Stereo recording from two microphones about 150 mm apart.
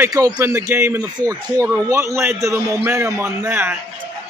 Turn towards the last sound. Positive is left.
turn(degrees=-15)  # may be behind; listen again after turning